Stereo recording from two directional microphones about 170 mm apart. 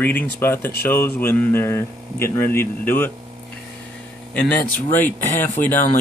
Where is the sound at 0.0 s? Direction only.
10° left (ahead or behind).